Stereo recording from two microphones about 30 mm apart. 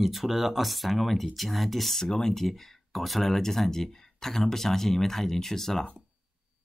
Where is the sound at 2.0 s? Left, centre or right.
Centre.